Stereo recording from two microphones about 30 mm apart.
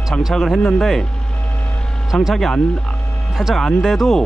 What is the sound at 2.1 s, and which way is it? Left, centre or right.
Speech, centre.